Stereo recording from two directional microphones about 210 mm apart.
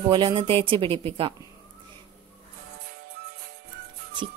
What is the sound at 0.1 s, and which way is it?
Speech, 25° right (ahead or behind).